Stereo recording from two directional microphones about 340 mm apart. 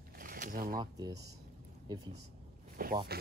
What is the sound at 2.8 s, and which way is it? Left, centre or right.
Speech, right.